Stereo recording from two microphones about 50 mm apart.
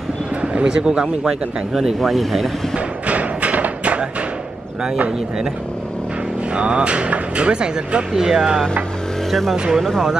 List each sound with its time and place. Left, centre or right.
0.4 s speech: centre
1.7 s speech: centre
3.1 s thump: right
6.5 s speech: centre